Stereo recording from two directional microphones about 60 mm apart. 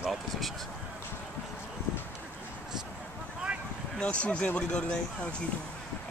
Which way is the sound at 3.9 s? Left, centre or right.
Left.